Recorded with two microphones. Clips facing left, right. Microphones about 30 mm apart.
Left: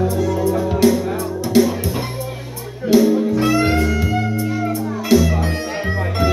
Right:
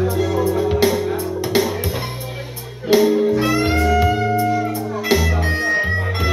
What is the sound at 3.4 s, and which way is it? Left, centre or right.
Music, centre.